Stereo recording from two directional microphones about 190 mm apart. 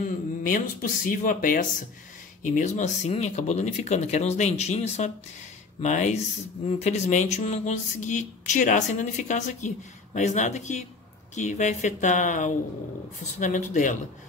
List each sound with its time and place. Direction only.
0.4 s speech: 45° left (ahead or behind)